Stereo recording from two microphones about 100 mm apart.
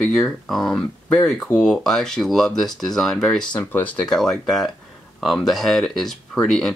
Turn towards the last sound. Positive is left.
turn(degrees=0)  # may be behind; listen again after turning